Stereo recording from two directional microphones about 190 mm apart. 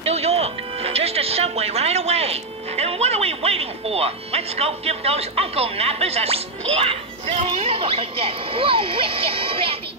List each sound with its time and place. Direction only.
0.0 s speech: 35° right (ahead or behind)